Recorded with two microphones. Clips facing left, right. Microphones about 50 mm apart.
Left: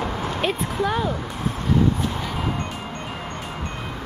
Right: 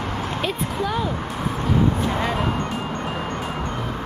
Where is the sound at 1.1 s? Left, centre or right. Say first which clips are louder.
Right 2 dB; centre.